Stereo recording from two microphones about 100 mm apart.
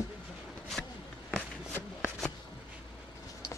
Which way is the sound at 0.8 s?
15° left (ahead or behind).